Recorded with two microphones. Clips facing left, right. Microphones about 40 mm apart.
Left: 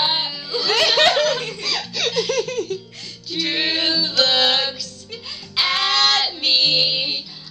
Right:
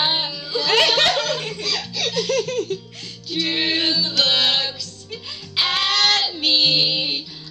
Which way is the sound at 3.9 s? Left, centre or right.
Centre.